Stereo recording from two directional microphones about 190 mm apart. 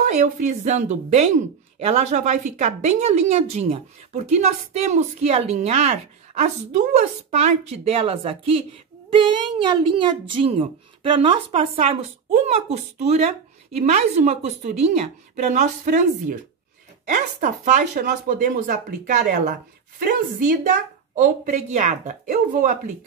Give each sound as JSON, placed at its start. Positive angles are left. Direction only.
{"t": 0.0, "sound": "a woman's voice", "side_deg": -40}